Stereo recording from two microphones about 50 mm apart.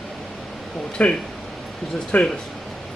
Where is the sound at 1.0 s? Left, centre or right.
Left.